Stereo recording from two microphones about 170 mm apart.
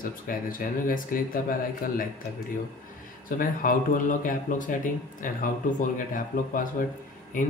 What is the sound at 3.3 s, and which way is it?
Speech, 55° left (ahead or behind).